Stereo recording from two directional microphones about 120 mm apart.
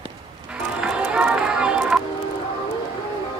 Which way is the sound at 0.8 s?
5° right (ahead or behind).